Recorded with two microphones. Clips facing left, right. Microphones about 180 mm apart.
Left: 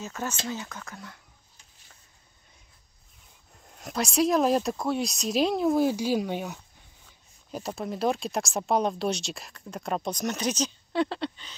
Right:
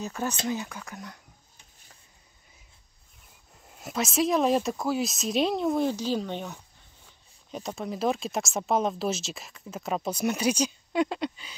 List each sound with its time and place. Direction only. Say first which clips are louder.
0.0 s speech: right 3 dB; 15° right (ahead or behind)
3.6 s speech: even; 5° right (ahead or behind)